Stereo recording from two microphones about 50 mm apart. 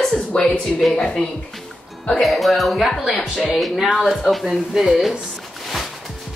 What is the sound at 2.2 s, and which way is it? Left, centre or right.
A woman's voice, centre.